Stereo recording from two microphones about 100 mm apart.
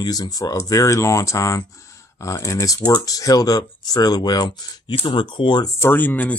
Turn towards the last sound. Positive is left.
turn(degrees=15)  # may be behind; listen again after turning